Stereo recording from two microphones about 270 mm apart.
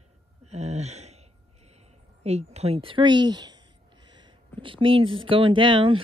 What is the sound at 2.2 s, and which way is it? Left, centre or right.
Speech, right.